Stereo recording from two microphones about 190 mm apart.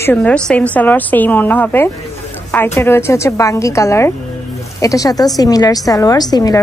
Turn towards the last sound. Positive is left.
turn(degrees=20)  # may be behind; listen again after turning